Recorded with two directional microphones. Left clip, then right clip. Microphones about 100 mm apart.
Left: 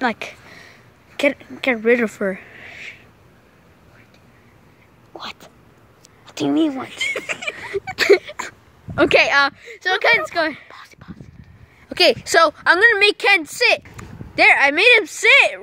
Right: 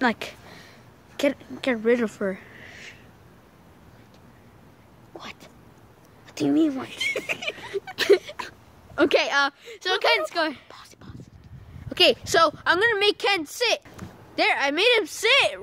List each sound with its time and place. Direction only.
0.0 s speech: 5° right (ahead or behind)
0.5 s a sound: 10° left (ahead or behind)
5.1 s speech: 15° left (ahead or behind)
6.8 s speech: centre (ahead or behind)
7.2 s speech: 30° left (ahead or behind)
9.6 s speech: 5° right (ahead or behind)
9.9 s speech: 10° left (ahead or behind)
10.7 s a sound: 5° left (ahead or behind)
11.9 s speech: 25° left (ahead or behind)